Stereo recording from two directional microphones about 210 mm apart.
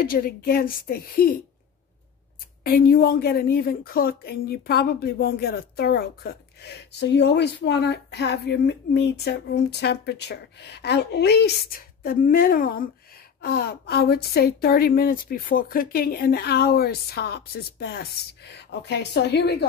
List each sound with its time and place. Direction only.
0.0 s speech: 45° left (ahead or behind)
2.6 s speech: 45° left (ahead or behind)